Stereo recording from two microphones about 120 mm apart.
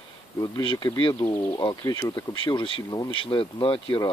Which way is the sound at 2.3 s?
45° left (ahead or behind).